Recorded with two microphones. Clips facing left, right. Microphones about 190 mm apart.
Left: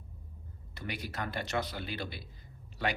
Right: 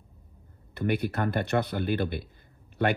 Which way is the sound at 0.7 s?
55° right (ahead or behind).